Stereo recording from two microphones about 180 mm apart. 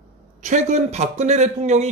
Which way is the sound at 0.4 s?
40° right (ahead or behind).